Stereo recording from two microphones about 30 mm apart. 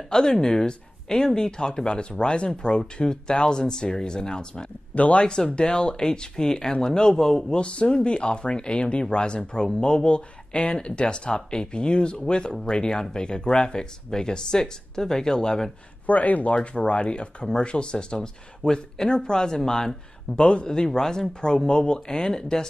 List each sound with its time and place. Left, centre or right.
0.1 s speech: left
4.9 s speech: left
5.2 s speech: left
16.1 s speech: left
16.5 s speech: left; by 19.9 s centre
20.3 s speech: left
20.6 s speech: left